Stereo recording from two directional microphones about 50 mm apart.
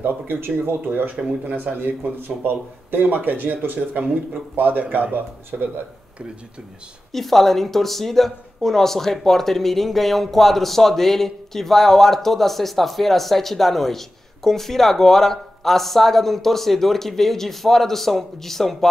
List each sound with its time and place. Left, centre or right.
0.0 s speech: right
7.1 s speech: centre